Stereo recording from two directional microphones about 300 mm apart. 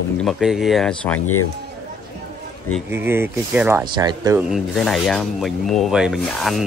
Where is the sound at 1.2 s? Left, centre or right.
Left.